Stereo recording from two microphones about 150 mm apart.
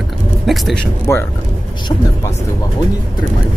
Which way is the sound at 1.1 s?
15° left (ahead or behind).